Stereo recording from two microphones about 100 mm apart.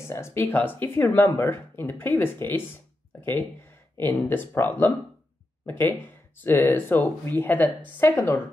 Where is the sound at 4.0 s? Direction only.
20° left (ahead or behind).